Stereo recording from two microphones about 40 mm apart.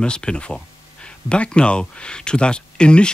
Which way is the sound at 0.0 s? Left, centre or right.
Left.